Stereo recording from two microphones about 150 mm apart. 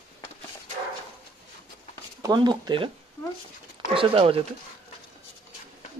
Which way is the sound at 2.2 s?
30° right (ahead or behind).